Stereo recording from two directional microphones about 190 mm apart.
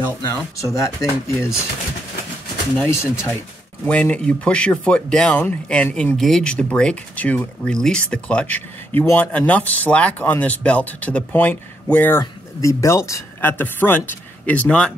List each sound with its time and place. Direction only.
0.6 s speech: 15° left (ahead or behind)
2.7 s speech: 10° left (ahead or behind)